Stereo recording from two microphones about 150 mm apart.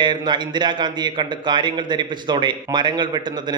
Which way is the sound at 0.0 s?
30° right (ahead or behind).